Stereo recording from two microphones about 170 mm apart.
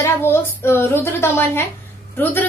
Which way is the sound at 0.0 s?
15° left (ahead or behind).